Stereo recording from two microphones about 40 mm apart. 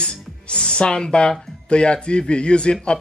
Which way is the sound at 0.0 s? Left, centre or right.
Left.